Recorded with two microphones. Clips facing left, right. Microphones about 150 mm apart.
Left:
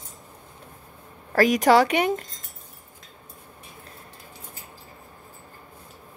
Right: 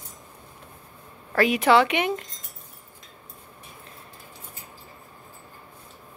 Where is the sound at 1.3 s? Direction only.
40° left (ahead or behind).